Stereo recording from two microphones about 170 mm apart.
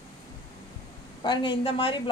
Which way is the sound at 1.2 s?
30° left (ahead or behind).